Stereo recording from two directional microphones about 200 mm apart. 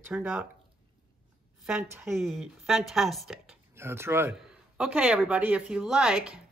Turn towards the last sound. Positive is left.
turn(degrees=-5)  # may be behind; listen again after turning